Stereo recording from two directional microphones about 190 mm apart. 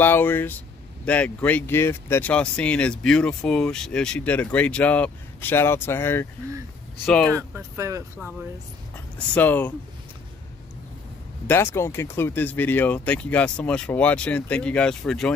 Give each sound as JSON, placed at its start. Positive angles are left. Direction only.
{"t": 0.0, "sound": "speech", "side_deg": 10}
{"t": 7.3, "sound": "speech", "side_deg": -15}
{"t": 9.3, "sound": "speech", "side_deg": 10}
{"t": 11.4, "sound": "speech", "side_deg": 10}